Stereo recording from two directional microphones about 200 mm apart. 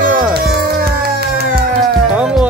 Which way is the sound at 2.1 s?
5° right (ahead or behind).